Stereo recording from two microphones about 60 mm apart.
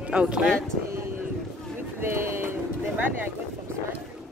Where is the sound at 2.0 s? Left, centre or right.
Right.